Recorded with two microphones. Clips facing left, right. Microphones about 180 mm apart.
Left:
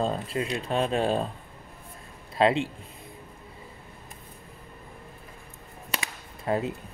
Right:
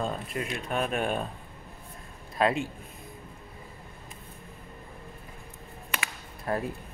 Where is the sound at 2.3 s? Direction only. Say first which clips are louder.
Left 3 dB; 25° left (ahead or behind).